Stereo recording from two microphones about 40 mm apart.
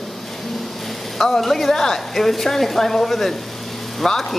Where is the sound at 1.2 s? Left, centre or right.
Centre.